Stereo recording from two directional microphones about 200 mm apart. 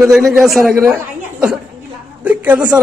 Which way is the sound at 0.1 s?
Centre (ahead or behind).